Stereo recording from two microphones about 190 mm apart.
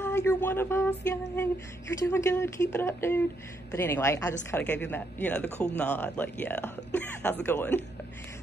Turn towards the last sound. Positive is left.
turn(degrees=10)  # may be behind; listen again after turning